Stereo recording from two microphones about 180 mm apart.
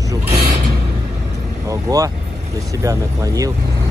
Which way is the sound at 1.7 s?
20° right (ahead or behind).